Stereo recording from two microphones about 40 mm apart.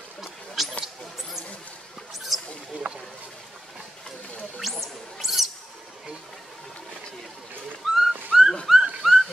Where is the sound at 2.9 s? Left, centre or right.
Right.